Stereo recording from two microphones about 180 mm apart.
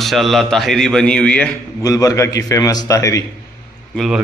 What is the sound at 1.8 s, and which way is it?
A man's voice, 20° left (ahead or behind).